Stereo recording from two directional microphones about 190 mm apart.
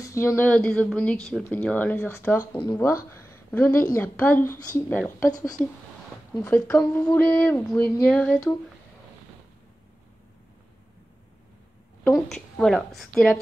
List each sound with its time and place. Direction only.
0.0 s speech: 15° left (ahead or behind)
3.1 s a sound: 15° left (ahead or behind)
3.9 s speech: 10° left (ahead or behind)
5.3 s speech: 20° left (ahead or behind)
12.0 s a woman's voice: 5° left (ahead or behind)